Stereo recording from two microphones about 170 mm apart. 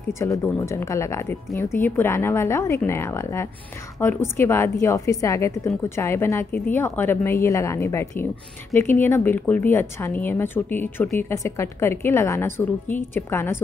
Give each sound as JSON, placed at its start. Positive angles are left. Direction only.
{"t": 0.2, "sound": "a woman's voice", "side_deg": 15}